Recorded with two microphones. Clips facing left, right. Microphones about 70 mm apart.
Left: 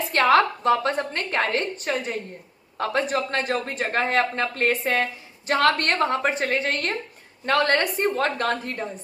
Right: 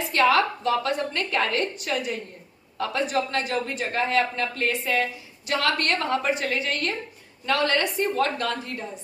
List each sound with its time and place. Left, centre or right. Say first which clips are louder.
0.1 s a woman's voice: left 2 dB; left